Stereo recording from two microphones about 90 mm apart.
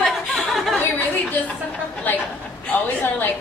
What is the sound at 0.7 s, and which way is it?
Speech, 20° left (ahead or behind).